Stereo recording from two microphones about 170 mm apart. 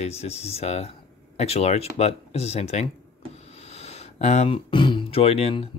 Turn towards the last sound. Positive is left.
turn(degrees=35)  # may be behind; listen again after turning